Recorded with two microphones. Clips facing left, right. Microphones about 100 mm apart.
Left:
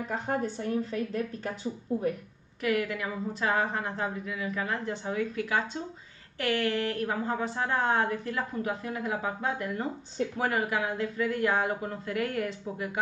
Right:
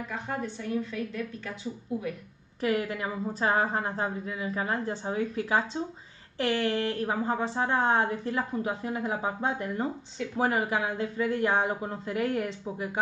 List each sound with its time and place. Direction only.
0.1 s a woman's voice: 35° left (ahead or behind)
2.6 s a woman's voice: 30° right (ahead or behind)